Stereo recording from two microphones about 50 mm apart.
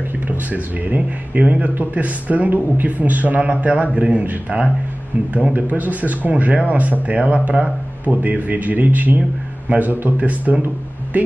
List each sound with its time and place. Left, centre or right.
0.5 s a man's voice: right